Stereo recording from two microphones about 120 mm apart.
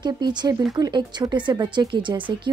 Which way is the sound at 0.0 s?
40° right (ahead or behind).